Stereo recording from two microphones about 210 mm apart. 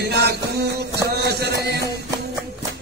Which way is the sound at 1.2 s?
50° right (ahead or behind).